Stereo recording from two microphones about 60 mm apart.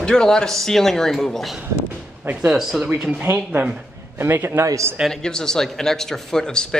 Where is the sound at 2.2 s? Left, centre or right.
Right.